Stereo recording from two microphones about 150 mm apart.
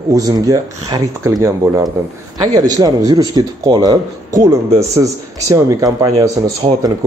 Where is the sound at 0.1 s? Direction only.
25° right (ahead or behind).